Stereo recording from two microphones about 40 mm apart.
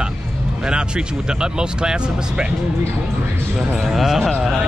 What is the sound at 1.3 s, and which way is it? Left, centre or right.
Speech, centre.